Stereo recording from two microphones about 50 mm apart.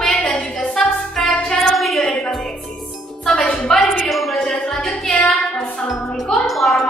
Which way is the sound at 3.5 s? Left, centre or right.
Centre.